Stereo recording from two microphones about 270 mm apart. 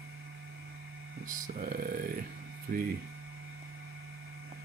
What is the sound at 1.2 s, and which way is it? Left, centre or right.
Speech, right.